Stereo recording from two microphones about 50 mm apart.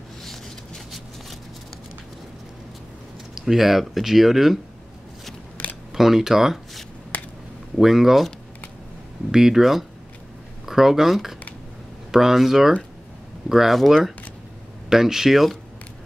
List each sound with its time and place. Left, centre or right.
0.2 s a sound: centre
3.3 s speech: centre
5.6 s camera: left
5.9 s speech: centre
9.3 s speech: centre